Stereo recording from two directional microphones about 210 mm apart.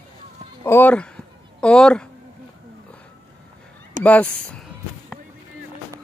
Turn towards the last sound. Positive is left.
turn(degrees=5)  # may be behind; listen again after turning